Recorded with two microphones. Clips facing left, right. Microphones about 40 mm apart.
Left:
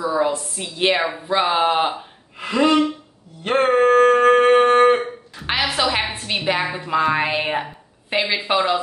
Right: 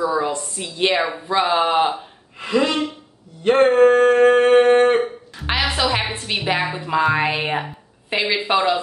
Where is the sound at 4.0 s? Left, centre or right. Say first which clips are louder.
Even; centre.